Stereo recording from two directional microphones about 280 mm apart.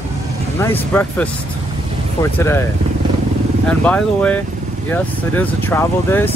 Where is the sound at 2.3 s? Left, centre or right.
Centre.